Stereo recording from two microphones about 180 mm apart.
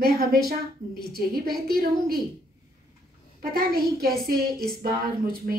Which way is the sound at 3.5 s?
55° right (ahead or behind).